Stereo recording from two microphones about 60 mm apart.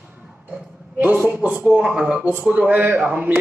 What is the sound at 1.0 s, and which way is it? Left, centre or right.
A man's voice, right.